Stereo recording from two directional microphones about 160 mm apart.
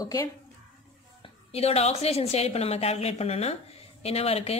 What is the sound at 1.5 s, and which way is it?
A woman's voice, 40° left (ahead or behind).